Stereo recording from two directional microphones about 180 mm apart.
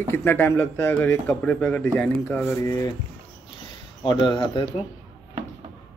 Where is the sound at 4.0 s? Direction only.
25° left (ahead or behind).